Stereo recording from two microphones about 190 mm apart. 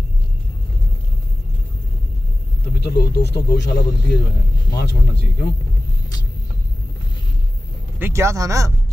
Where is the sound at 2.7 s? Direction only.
55° left (ahead or behind).